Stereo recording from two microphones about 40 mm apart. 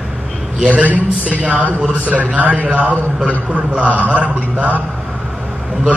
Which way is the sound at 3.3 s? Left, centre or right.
Right.